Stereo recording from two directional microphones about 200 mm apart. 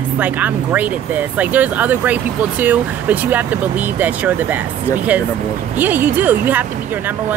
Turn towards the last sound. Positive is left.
turn(degrees=-10)  # may be behind; listen again after turning